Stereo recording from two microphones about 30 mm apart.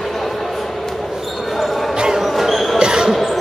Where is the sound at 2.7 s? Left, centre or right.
Right.